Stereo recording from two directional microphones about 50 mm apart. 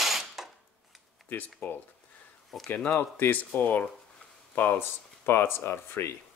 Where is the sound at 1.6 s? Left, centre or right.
Left.